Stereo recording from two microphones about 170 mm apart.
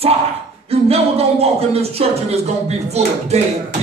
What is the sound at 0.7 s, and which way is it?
Speech, 35° right (ahead or behind).